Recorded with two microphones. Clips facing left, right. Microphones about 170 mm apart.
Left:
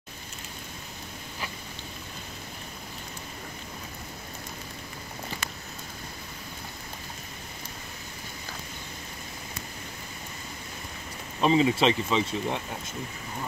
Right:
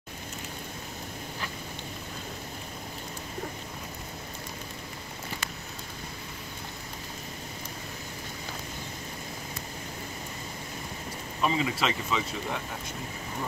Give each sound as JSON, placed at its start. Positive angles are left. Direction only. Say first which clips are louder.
{"t": 11.4, "sound": "speech", "louder": "left 6 dB", "side_deg": 25}